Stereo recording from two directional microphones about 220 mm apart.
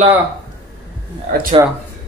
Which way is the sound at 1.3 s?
40° right (ahead or behind).